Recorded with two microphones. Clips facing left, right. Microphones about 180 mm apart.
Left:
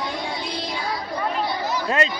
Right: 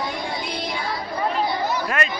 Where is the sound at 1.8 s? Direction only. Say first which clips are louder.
Left 2 dB; 25° left (ahead or behind).